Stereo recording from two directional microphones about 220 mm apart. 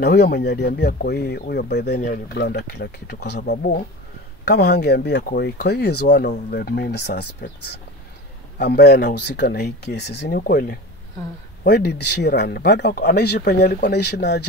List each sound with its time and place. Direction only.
0.0 s speech: 50° left (ahead or behind)
8.5 s speech: 50° left (ahead or behind)